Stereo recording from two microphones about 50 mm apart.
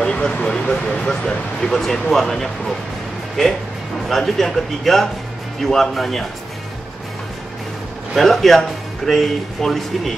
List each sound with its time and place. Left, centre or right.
0.0 s speech: centre
4.1 s speech: centre
8.1 s speech: centre